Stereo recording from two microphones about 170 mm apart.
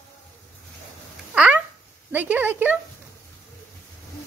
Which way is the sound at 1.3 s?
5° right (ahead or behind).